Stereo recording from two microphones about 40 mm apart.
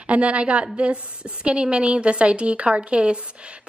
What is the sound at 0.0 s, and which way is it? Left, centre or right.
A woman's voice, right.